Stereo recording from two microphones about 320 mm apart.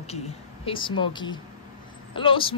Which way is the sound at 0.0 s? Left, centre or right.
Centre.